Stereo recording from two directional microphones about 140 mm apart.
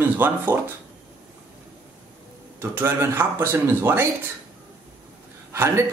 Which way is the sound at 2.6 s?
15° right (ahead or behind).